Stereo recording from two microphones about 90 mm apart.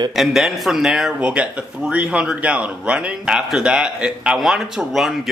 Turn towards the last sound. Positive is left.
turn(degrees=-5)  # may be behind; listen again after turning